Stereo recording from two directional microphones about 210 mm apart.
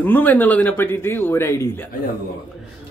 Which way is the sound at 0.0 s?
10° left (ahead or behind).